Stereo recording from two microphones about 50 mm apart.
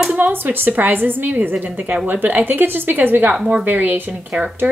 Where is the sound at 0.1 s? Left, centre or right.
Right.